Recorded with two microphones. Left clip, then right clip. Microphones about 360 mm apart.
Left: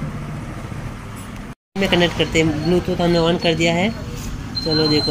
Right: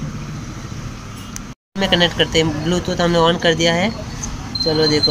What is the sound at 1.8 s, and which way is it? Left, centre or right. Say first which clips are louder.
Speech: right 2 dB; right.